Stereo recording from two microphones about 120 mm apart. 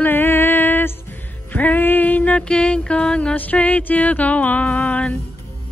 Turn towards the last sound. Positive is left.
turn(degrees=10)  # may be behind; listen again after turning